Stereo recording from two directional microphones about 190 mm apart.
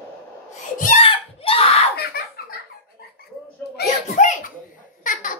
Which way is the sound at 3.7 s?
45° left (ahead or behind).